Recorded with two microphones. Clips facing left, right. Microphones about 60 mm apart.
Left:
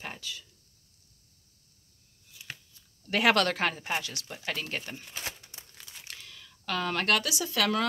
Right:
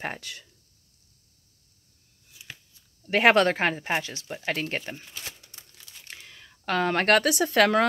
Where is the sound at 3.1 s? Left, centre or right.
Right.